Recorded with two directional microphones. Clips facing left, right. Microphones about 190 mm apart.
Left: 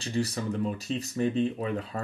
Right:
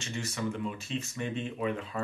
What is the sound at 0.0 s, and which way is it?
Speech, 35° left (ahead or behind).